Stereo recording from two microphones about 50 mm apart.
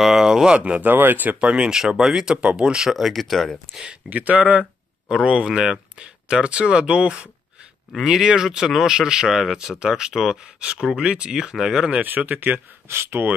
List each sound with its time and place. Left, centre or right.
0.0 s a sound: centre
0.5 s speech: right
0.8 s speech: right
1.4 s speech: centre
2.3 s speech: right
3.1 s speech: centre
3.8 s speech: right
11.3 s speech: centre
12.0 s speech: right
12.8 s speech: right